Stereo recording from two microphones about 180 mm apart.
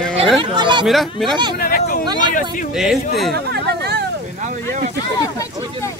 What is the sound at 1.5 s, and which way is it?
Hubbub, 55° left (ahead or behind).